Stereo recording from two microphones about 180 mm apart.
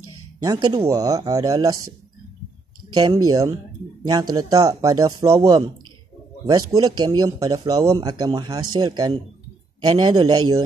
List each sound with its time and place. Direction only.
0.4 s speech: 20° right (ahead or behind)
3.0 s speech: 20° right (ahead or behind)